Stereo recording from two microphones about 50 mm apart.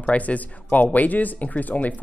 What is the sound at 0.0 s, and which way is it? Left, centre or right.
Speech, left.